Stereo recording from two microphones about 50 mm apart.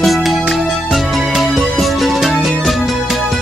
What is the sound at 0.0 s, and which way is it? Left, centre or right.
Music, centre.